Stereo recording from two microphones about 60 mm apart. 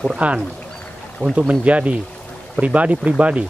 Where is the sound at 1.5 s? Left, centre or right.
Right.